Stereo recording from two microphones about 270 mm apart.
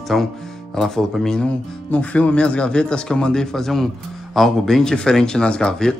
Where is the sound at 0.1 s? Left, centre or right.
Centre.